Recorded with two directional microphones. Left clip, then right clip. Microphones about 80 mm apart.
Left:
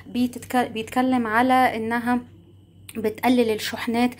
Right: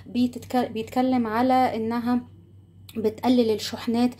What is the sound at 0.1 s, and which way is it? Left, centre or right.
Speech, right.